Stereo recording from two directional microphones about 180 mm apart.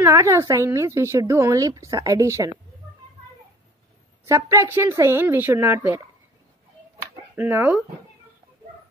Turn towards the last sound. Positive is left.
turn(degrees=-10)  # may be behind; listen again after turning